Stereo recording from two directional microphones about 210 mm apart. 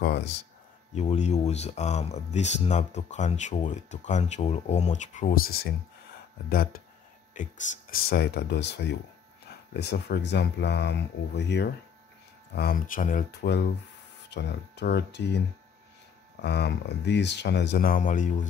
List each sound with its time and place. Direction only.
0.0 s speech: 55° left (ahead or behind)
0.9 s speech: 35° left (ahead or behind)
7.9 s speech: 50° left (ahead or behind)
12.5 s speech: 45° left (ahead or behind)
16.3 s speech: 55° left (ahead or behind)